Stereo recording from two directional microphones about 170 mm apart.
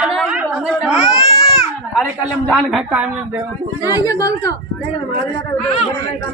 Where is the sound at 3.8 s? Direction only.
20° left (ahead or behind).